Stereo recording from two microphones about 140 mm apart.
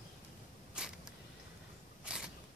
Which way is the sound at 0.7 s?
5° right (ahead or behind).